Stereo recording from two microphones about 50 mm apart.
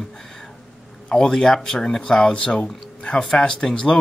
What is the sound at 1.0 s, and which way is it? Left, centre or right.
Speech, centre.